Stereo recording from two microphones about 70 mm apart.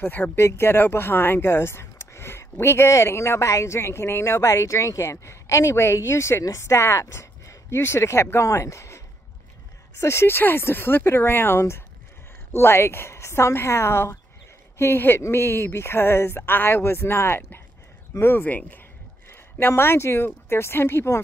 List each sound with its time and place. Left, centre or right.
0.4 s speech: left